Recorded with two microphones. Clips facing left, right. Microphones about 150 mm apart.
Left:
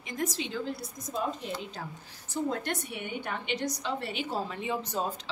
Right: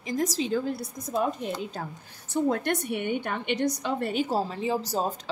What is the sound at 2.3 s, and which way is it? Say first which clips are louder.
A woman's voice: right 6 dB; 60° right (ahead or behind).